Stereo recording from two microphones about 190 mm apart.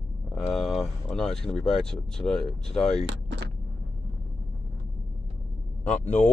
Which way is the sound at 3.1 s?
65° right (ahead or behind).